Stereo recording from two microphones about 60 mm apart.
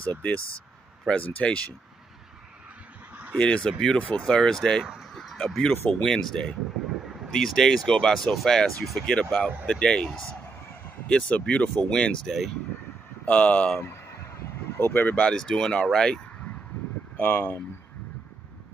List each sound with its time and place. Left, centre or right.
0.0 s speech: left
3.3 s speech: centre
5.1 s a sound: centre
5.7 s speech: left
6.0 s speech: centre
13.2 s speech: left
13.7 s fowl: left
15.1 s speech: centre
17.2 s speech: left